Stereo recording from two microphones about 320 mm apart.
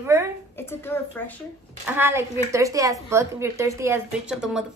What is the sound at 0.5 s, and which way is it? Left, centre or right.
Speech, centre.